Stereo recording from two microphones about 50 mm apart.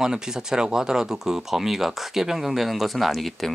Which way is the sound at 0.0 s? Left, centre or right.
Centre.